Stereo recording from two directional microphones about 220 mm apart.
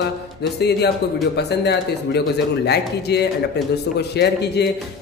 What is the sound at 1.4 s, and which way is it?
Speech, 50° left (ahead or behind).